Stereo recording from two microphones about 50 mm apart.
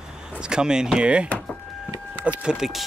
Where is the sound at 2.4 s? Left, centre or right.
Centre.